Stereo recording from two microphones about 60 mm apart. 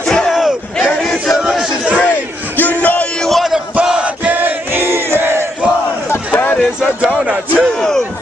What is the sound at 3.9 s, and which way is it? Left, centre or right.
Crowd, right.